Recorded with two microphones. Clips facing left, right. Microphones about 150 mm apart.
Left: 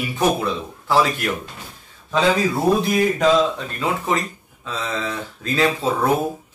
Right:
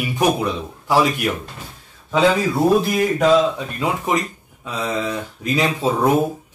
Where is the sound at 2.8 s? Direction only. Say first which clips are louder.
Even; 5° right (ahead or behind).